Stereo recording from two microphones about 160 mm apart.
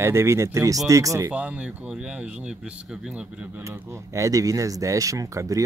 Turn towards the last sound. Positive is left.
turn(degrees=-20)  # may be behind; listen again after turning